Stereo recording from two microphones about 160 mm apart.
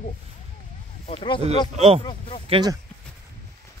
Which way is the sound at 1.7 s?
40° right (ahead or behind).